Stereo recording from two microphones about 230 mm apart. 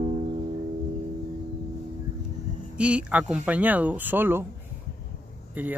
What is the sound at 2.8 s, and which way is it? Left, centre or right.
Speech, centre.